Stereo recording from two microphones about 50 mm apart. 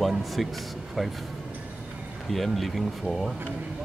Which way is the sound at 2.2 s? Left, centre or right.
Centre.